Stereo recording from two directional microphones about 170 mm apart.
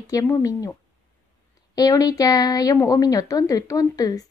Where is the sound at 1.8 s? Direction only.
20° left (ahead or behind).